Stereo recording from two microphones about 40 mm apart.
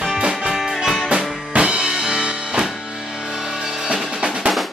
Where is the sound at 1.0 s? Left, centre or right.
Right.